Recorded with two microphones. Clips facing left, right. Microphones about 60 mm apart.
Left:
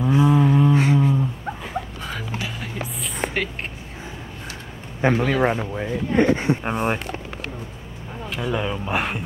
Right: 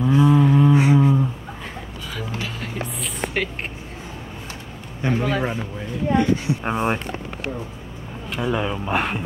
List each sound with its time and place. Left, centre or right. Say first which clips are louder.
0.0 s a sound: right 1 dB; centre
2.1 s music: right 2 dB; centre
2.8 s a sound: left 1 dB; centre
5.2 s speech: left 3 dB; left
6.6 s speech: right 1 dB; centre
8.3 s speech: right 2 dB; centre